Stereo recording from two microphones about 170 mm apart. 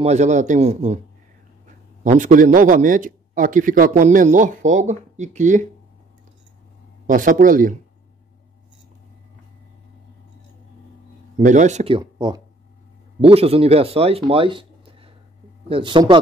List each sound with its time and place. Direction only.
0.0 s a man's voice: 40° right (ahead or behind)
2.0 s a man's voice: 50° right (ahead or behind)
7.1 s a man's voice: 50° right (ahead or behind)
11.3 s a man's voice: 45° right (ahead or behind)
11.9 s speech: 25° right (ahead or behind)